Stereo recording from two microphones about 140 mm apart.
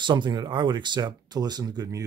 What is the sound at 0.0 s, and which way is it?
Speech, 35° right (ahead or behind).